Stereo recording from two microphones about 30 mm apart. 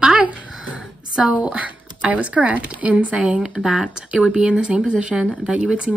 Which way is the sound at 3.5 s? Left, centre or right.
Centre.